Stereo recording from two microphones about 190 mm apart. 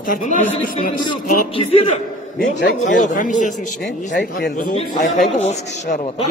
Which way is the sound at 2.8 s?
40° left (ahead or behind).